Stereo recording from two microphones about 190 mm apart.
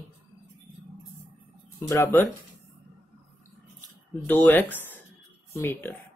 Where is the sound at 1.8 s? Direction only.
15° left (ahead or behind).